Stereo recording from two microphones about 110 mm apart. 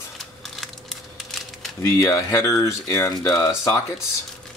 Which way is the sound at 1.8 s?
30° left (ahead or behind).